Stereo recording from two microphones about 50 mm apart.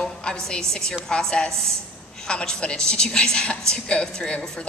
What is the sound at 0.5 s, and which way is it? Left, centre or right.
A woman's voice, centre.